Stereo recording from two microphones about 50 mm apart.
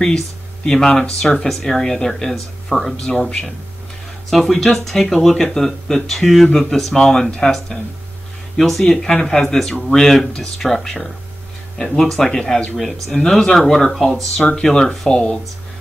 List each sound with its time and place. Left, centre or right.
0.7 s speech: centre
3.1 s speech: centre
4.3 s speech: centre
14.5 s speech: centre